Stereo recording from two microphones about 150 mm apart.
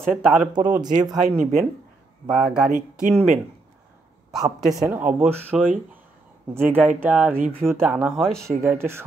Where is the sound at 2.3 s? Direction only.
5° right (ahead or behind).